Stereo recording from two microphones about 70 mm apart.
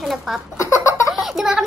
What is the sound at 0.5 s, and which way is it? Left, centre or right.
Giggle, left.